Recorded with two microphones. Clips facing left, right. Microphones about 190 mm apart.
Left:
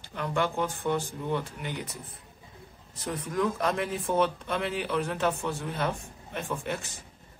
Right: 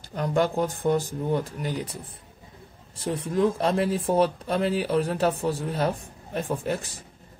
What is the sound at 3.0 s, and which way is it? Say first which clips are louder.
Speech: right 5 dB; 30° right (ahead or behind).